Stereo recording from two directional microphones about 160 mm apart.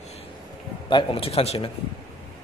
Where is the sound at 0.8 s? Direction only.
30° left (ahead or behind).